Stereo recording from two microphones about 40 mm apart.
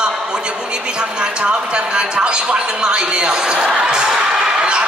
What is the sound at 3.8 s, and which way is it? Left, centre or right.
Crowd, centre.